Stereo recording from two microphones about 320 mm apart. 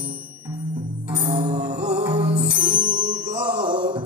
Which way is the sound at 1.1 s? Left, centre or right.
Centre.